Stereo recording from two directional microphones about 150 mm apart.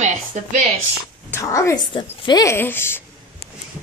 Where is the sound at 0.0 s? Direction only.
55° right (ahead or behind).